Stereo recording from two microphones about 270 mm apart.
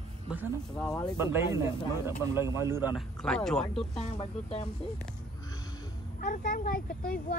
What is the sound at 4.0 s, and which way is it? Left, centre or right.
Speech, left.